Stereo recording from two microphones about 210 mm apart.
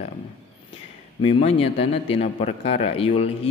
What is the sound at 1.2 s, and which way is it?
A man's voice, 30° left (ahead or behind).